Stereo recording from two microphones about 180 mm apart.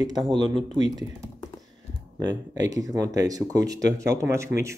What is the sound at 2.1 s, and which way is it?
Speech, 20° right (ahead or behind).